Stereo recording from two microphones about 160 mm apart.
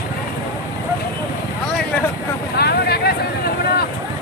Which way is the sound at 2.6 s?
80° left.